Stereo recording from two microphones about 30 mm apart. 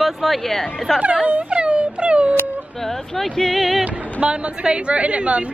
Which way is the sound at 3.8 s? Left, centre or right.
Right.